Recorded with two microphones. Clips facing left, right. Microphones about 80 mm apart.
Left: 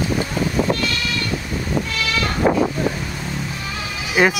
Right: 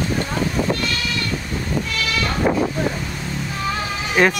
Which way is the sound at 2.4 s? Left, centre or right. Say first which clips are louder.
Left 2 dB; left.